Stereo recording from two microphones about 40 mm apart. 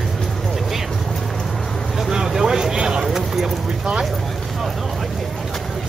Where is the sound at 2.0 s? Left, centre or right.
Centre.